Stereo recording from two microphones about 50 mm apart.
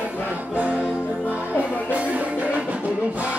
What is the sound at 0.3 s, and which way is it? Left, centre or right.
Music, right.